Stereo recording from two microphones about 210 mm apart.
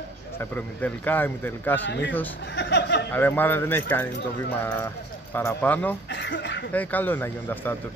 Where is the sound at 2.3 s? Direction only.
55° left (ahead or behind).